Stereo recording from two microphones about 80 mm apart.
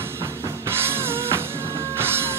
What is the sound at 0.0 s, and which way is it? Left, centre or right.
Music, right.